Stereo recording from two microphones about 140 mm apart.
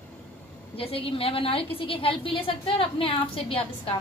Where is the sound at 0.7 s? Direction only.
40° left (ahead or behind).